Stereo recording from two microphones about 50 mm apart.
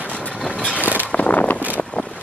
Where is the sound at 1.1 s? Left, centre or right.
Left.